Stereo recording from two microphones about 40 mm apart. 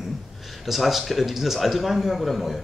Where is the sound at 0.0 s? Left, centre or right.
Centre.